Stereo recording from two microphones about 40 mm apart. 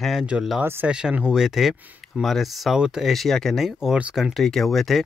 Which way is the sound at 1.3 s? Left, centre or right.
Centre.